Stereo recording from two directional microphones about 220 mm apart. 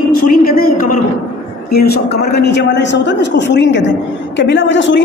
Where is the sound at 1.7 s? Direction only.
45° left (ahead or behind).